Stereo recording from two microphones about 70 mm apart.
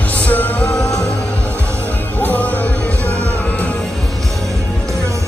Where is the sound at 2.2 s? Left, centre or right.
Left.